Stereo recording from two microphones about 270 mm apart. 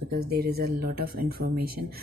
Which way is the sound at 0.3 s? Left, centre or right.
Right.